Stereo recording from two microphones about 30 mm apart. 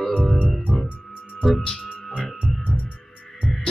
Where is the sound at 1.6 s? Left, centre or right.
Left.